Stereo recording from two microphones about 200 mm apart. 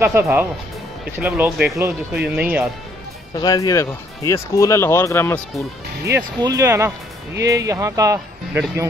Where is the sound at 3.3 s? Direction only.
20° left (ahead or behind).